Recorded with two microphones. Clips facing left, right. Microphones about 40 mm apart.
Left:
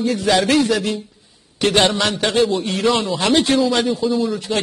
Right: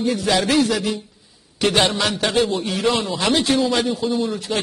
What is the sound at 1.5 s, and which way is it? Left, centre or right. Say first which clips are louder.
Speech: left 2 dB; left.